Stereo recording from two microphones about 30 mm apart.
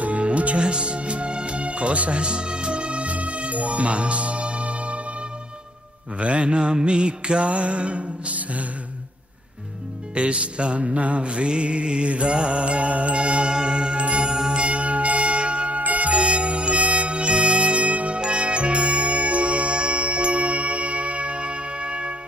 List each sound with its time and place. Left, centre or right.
0.0 s music: right
0.6 s music: right
6.1 s mantra: right
10.1 s mantra: right
14.5 s music: right
15.8 s music: right
18.1 s music: right
18.9 s music: right